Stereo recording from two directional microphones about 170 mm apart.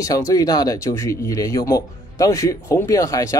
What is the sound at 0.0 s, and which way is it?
Speech, 20° left (ahead or behind).